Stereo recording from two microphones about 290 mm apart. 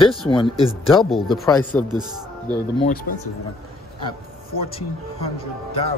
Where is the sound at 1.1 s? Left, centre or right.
Centre.